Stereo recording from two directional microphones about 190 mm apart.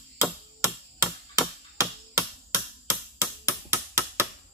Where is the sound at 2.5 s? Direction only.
20° left (ahead or behind).